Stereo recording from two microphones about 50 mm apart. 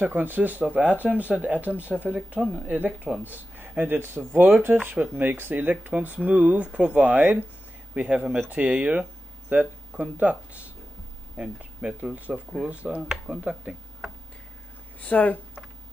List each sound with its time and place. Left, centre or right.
0.0 s speech: right
2.4 s speech: centre
3.6 s speech: right
4.9 s speech: right
5.2 s speech: right
6.9 s speech: right
7.9 s speech: right
8.5 s speech: right
9.5 s a sound: right
10.1 s speech: right
15.0 s speech: left